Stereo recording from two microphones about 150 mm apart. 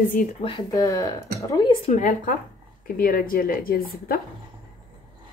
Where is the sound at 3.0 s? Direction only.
70° left (ahead or behind).